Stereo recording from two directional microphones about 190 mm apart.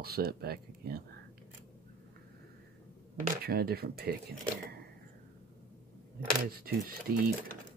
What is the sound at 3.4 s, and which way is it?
Speech, 55° right (ahead or behind).